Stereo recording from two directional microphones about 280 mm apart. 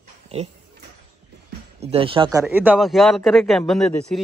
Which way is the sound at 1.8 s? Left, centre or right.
Right.